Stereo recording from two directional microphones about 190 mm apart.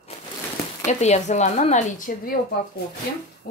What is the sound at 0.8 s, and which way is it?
Speech, 35° left (ahead or behind).